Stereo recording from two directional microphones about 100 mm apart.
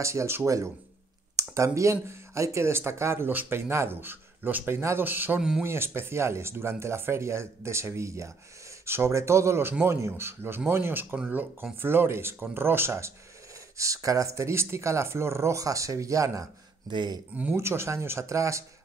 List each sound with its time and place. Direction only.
0.0 s speech: 30° right (ahead or behind)
11.2 s speech: 10° right (ahead or behind)
11.8 s speech: 25° right (ahead or behind)
16.9 s speech: 50° right (ahead or behind)
17.6 s speech: 25° right (ahead or behind)